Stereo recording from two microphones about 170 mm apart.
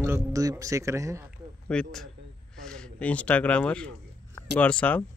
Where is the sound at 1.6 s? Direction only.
5° left (ahead or behind).